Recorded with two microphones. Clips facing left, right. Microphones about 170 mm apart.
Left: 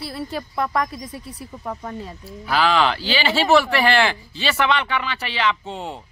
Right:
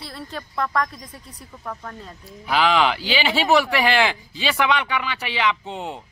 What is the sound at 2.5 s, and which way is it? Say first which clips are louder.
Speech: even; 15° right (ahead or behind).